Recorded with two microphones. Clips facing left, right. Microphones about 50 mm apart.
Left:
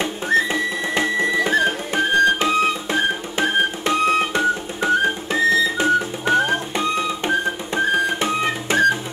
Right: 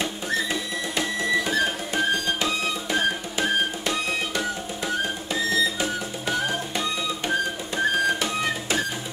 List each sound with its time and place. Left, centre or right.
0.0 s music: left